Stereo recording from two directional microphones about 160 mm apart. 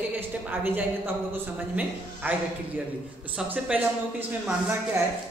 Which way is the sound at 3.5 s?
10° right (ahead or behind).